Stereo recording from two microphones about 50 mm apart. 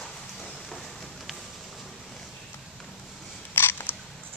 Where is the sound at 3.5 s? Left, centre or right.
Left.